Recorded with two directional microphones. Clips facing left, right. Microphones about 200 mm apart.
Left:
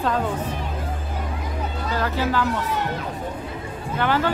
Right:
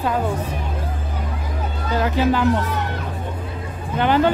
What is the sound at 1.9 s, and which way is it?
Speech, 15° right (ahead or behind).